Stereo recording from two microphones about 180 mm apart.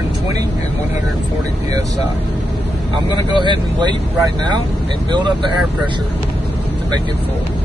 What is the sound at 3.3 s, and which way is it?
Speech, 25° right (ahead or behind).